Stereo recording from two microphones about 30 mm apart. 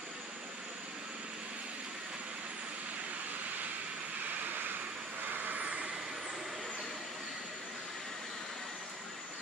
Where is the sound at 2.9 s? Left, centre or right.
Right.